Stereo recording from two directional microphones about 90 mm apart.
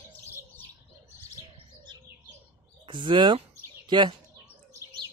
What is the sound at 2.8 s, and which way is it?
Speech, 60° right (ahead or behind).